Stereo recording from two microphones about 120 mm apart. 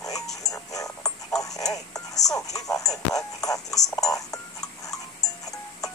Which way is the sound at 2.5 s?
30° left (ahead or behind).